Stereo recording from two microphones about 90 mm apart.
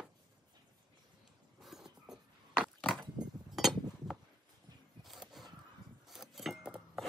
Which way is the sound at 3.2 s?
45° right (ahead or behind).